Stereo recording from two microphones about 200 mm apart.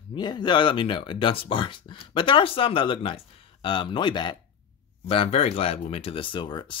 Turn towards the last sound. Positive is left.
turn(degrees=25)  # may be behind; listen again after turning